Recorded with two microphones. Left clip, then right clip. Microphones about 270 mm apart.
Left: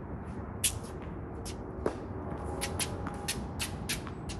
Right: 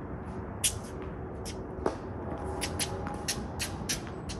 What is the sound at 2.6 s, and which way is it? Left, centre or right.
Music, centre.